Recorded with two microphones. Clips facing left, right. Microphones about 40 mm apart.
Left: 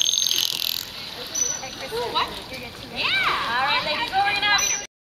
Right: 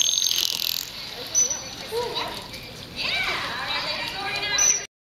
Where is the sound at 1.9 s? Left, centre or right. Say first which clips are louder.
Even; left.